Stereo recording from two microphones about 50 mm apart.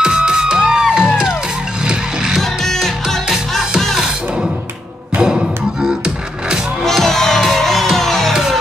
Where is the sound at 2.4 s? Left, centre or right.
Centre.